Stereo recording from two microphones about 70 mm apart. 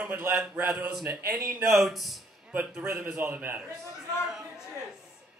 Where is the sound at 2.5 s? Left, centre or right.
Right.